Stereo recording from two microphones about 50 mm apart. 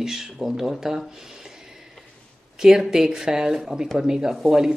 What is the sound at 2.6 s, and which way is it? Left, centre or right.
Speech, centre.